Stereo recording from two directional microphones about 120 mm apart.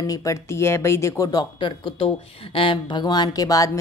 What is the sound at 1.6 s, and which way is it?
Speech, 45° left (ahead or behind).